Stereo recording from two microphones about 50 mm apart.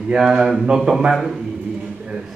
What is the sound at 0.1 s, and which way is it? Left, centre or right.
Speech, centre.